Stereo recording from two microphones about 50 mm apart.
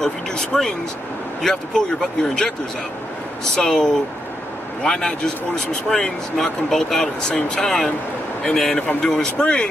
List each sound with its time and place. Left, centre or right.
0.0 s speech: centre
3.5 s speech: centre